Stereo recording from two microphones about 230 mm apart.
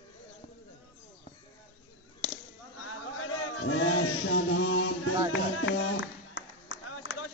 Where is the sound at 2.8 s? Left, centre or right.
Left.